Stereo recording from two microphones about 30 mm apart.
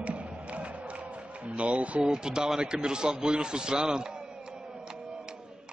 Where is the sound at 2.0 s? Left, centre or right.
Right.